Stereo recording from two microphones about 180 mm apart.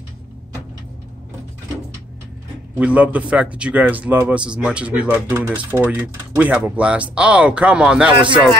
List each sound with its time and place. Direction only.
2.7 s a man's voice: 5° right (ahead or behind)
8.1 s speech: 30° right (ahead or behind)